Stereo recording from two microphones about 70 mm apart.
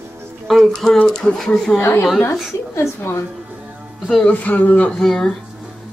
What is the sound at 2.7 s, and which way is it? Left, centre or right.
Speech, left.